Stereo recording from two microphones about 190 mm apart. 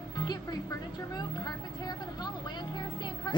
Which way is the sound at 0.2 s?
20° left (ahead or behind).